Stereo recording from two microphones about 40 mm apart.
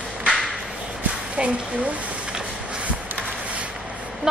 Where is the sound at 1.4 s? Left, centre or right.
Right.